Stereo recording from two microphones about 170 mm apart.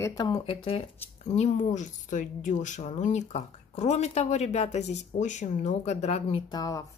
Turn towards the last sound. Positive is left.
turn(degrees=20)  # may be behind; listen again after turning